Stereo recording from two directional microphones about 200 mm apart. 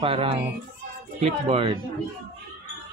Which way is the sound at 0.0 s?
30° right (ahead or behind).